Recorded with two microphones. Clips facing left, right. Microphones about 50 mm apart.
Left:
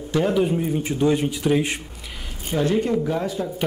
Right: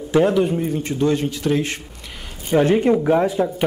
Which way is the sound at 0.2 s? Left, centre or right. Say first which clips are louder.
Right 2 dB; centre.